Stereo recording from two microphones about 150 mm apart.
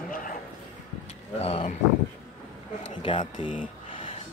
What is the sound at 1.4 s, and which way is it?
Speech, 40° left (ahead or behind).